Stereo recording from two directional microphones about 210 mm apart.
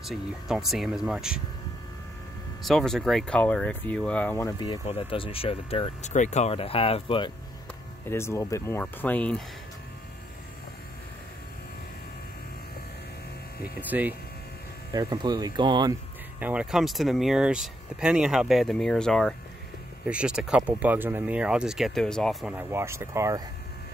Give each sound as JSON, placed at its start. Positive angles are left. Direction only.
{"t": 0.0, "sound": "speech", "side_deg": 0}
{"t": 2.6, "sound": "speech", "side_deg": 0}
{"t": 8.1, "sound": "speech", "side_deg": 10}
{"t": 13.7, "sound": "speech", "side_deg": -10}
{"t": 14.9, "sound": "speech", "side_deg": -20}
{"t": 16.3, "sound": "speech", "side_deg": -5}